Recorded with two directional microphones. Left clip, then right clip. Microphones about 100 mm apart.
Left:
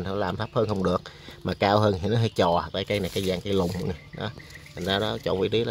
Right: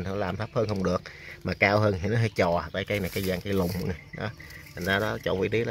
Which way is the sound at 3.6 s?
Centre (ahead or behind).